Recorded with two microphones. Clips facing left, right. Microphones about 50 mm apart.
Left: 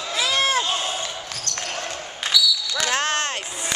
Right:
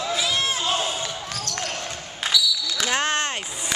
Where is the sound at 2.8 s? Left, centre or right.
Centre.